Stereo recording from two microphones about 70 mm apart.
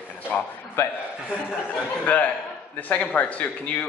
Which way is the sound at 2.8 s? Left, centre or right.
Left.